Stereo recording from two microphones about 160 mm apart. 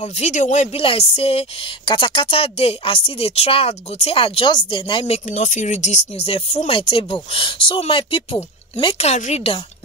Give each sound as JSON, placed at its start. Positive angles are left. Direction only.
{"t": 0.0, "sound": "speech", "side_deg": 45}